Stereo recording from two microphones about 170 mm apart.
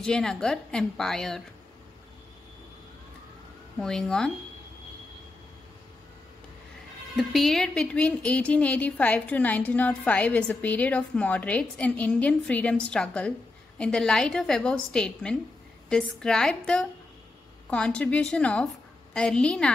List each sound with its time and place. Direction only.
0.0 s a woman's voice: 5° left (ahead or behind)
3.7 s a woman's voice: 5° left (ahead or behind)
7.2 s a woman's voice: centre (ahead or behind)